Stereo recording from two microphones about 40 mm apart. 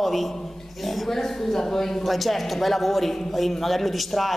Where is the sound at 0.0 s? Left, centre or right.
Centre.